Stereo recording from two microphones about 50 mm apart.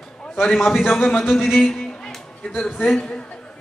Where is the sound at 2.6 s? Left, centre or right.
Centre.